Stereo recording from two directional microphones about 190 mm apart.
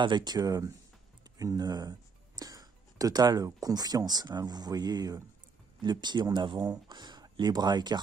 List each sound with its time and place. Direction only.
0.0 s speech: 25° right (ahead or behind)